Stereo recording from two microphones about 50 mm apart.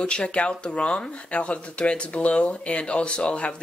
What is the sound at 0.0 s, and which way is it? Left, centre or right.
Speech, centre.